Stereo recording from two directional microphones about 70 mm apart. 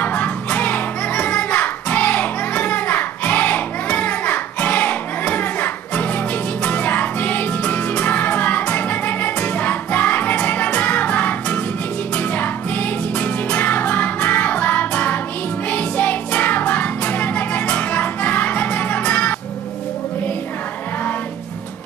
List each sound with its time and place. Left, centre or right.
0.0 s music: left